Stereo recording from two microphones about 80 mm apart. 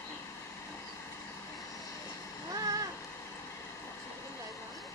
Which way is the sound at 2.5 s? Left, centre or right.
Right.